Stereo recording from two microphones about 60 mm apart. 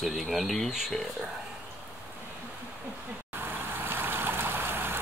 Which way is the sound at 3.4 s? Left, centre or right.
Right.